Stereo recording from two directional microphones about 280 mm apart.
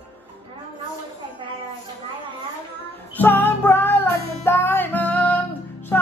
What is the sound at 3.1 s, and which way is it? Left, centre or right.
Music, centre.